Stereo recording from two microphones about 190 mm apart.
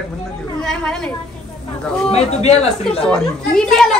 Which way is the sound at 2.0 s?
35° left (ahead or behind).